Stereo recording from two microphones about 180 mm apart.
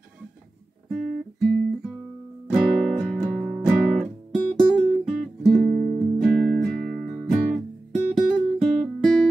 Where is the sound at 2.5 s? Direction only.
5° right (ahead or behind).